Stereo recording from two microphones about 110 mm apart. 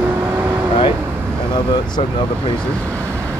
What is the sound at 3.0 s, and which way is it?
Vehicle, 25° right (ahead or behind).